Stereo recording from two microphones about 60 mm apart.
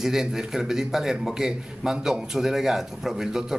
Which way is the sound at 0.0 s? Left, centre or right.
Centre.